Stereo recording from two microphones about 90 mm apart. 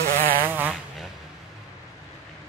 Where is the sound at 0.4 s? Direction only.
20° right (ahead or behind).